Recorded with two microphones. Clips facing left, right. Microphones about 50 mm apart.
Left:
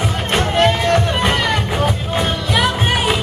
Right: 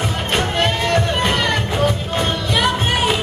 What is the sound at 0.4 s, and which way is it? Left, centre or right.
Music, centre.